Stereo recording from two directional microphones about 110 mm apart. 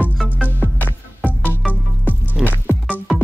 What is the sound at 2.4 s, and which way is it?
Music, centre (ahead or behind).